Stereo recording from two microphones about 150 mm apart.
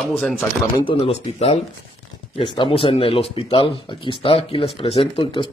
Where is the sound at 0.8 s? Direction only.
40° left (ahead or behind).